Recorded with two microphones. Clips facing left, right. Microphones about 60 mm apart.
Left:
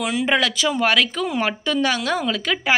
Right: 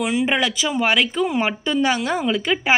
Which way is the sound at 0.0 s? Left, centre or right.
Centre.